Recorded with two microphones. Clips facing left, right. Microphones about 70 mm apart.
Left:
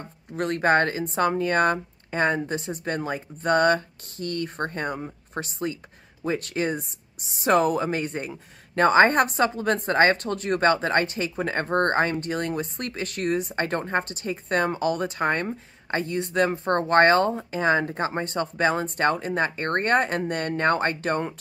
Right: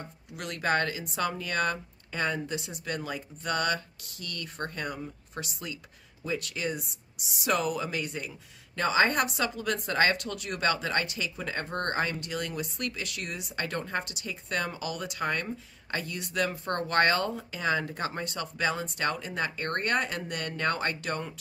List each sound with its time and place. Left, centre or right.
0.3 s speech: left